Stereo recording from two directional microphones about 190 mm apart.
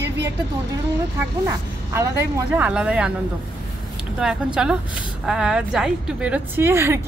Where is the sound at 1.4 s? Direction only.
15° right (ahead or behind).